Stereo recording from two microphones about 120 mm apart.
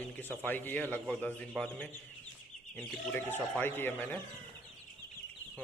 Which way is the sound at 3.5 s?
15° left (ahead or behind).